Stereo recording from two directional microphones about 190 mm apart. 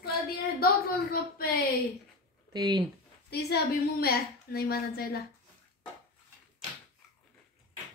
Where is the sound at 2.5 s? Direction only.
20° right (ahead or behind).